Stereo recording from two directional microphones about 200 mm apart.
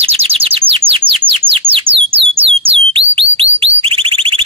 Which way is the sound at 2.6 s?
30° right (ahead or behind).